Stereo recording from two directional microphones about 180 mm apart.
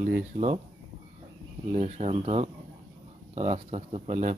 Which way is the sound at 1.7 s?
40° right (ahead or behind).